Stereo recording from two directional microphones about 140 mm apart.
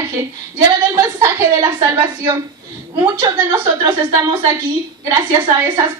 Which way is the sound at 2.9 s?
20° right (ahead or behind).